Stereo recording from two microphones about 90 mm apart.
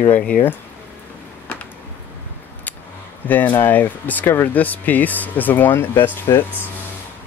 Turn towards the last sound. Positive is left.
turn(degrees=25)  # may be behind; listen again after turning